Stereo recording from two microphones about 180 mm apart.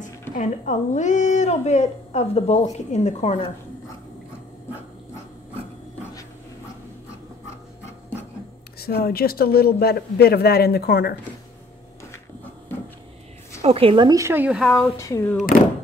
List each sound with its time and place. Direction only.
0.3 s speech: 45° left (ahead or behind)
8.7 s speech: 60° left (ahead or behind)
13.6 s speech: 35° right (ahead or behind); by 14.9 s centre (ahead or behind)
15.0 s speech: 15° left (ahead or behind)